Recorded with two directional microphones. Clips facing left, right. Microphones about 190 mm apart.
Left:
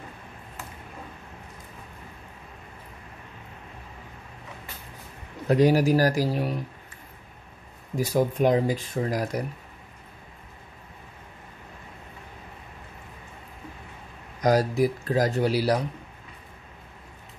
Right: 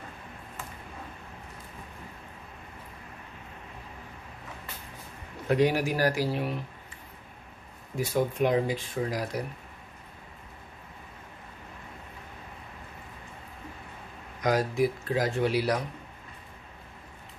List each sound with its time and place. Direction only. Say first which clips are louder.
5.5 s speech: left 5 dB; 40° left (ahead or behind)
8.0 s speech: left 4 dB; 40° left (ahead or behind)
14.4 s speech: left 4 dB; 40° left (ahead or behind)